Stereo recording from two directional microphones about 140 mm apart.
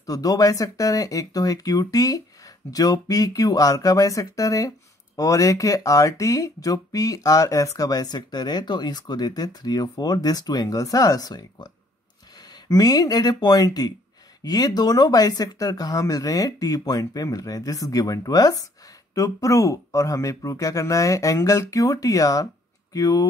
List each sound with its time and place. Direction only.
0.0 s speech: 25° left (ahead or behind)